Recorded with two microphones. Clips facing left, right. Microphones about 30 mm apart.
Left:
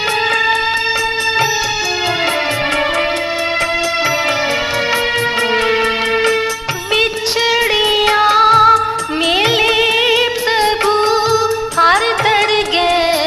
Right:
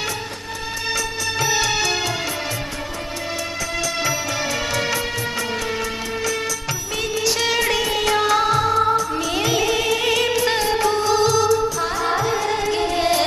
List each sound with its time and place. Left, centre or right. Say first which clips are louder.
8.1 s music: left 6 dB; left
8.5 s music: left 10 dB; left
10.0 s music: left 5 dB; left
10.6 s music: left 6 dB; left
11.8 s music: left 9 dB; left